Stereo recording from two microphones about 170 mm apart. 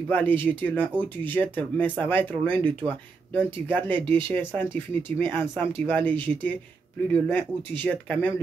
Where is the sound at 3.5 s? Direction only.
10° left (ahead or behind).